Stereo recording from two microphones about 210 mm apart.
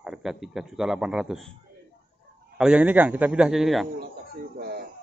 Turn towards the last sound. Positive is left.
turn(degrees=-50)  # may be behind; listen again after turning